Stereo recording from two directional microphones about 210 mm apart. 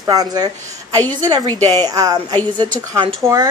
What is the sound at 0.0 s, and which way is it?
Speech, 20° right (ahead or behind).